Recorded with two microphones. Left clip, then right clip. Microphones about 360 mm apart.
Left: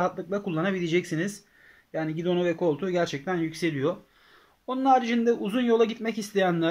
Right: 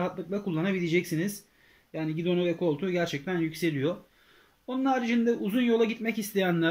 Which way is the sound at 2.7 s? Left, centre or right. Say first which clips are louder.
Left 2 dB; left.